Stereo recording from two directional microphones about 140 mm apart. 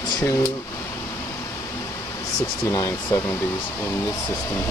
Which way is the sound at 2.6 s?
25° left (ahead or behind).